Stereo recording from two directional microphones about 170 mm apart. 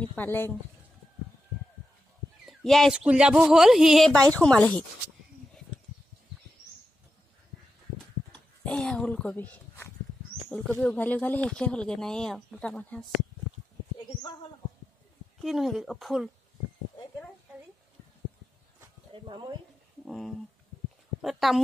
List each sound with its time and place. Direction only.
0.1 s speech: 10° left (ahead or behind)
2.4 s speech: centre (ahead or behind)
8.3 s speech: 5° left (ahead or behind)
15.4 s speech: centre (ahead or behind)
19.2 s speech: 25° right (ahead or behind)
20.1 s speech: centre (ahead or behind)